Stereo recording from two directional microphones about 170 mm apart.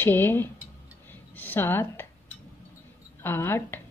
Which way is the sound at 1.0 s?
10° left (ahead or behind).